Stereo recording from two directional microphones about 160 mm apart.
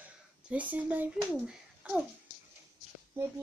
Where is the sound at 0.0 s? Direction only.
10° right (ahead or behind).